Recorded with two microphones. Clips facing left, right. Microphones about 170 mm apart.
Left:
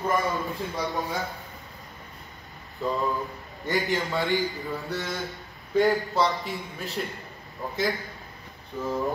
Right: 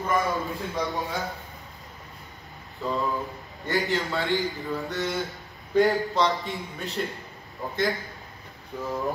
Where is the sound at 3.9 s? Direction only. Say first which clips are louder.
Even; 20° left (ahead or behind).